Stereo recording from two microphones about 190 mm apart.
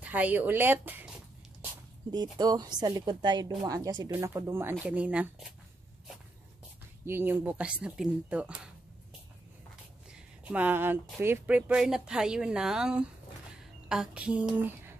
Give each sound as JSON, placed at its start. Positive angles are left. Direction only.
{"t": 0.0, "sound": "speech", "side_deg": -10}
{"t": 2.3, "sound": "a woman's voice", "side_deg": -20}
{"t": 7.1, "sound": "speech", "side_deg": -10}
{"t": 10.1, "sound": "a sound", "side_deg": -5}
{"t": 11.1, "sound": "speech", "side_deg": -10}
{"t": 13.8, "sound": "a sound", "side_deg": -5}